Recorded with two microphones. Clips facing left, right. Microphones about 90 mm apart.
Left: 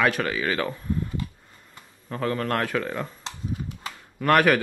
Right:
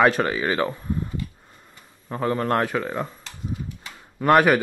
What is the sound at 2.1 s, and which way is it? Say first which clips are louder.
Speech: right 3 dB; 25° right (ahead or behind).